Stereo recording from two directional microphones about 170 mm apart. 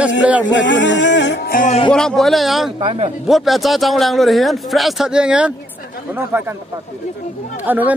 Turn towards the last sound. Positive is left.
turn(degrees=-10)  # may be behind; listen again after turning